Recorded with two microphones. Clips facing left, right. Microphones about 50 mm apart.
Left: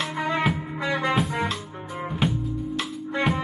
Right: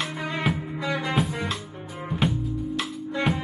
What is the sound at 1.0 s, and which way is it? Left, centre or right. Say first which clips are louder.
Music: left 4 dB; centre.